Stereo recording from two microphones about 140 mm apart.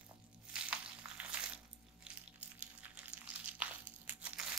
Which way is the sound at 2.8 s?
10° right (ahead or behind).